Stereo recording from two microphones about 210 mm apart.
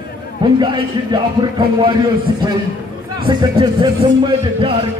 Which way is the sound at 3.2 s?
20° right (ahead or behind).